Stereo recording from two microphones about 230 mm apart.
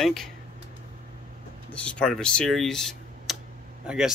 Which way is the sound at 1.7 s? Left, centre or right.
Centre.